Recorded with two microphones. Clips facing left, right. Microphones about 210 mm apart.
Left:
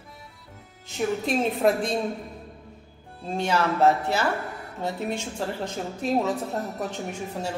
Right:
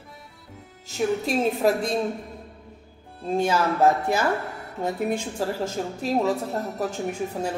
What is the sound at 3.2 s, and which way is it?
A woman's voice, 10° right (ahead or behind).